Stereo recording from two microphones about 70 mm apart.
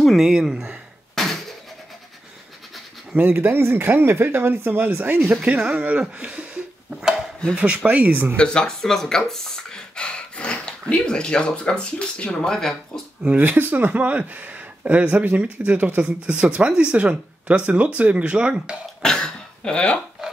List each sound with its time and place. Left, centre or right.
0.0 s speech: centre
1.1 s a sound: centre
3.2 s speech: right
5.2 s speech: centre
8.4 s speech: centre
13.2 s speech: right
19.0 s throat clearing: centre